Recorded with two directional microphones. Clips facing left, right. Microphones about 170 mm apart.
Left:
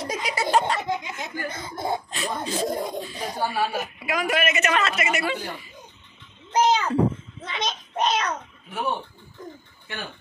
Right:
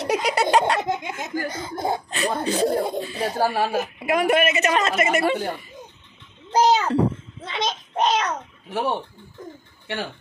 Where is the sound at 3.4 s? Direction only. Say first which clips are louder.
Right 1 dB; 40° right (ahead or behind).